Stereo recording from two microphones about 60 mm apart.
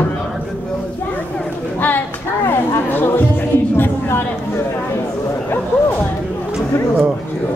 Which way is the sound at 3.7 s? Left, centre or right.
Left.